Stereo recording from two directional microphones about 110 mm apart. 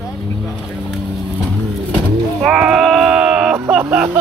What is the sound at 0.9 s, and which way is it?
Vehicle, 5° right (ahead or behind).